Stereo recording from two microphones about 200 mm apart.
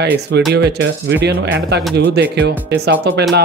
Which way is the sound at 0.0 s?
55° right (ahead or behind).